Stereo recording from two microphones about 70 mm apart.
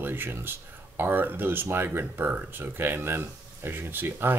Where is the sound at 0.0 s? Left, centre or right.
Right.